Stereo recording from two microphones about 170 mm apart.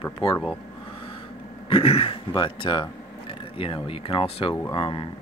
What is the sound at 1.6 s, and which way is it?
Speech, 35° left (ahead or behind).